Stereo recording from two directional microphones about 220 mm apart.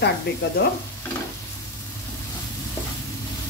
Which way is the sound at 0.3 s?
50° left (ahead or behind).